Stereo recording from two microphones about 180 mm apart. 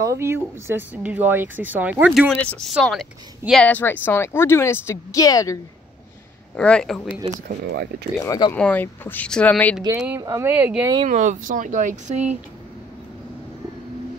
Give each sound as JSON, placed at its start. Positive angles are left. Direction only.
{"t": 0.0, "sound": "speech", "side_deg": -15}
{"t": 2.3, "sound": "speech", "side_deg": 5}
{"t": 6.5, "sound": "speech", "side_deg": 5}
{"t": 7.4, "sound": "speech", "side_deg": -65}
{"t": 8.3, "sound": "speech", "side_deg": 20}
{"t": 8.5, "sound": "speech", "side_deg": 10}
{"t": 9.9, "sound": "speech", "side_deg": -10}
{"t": 11.1, "sound": "speech", "side_deg": -45}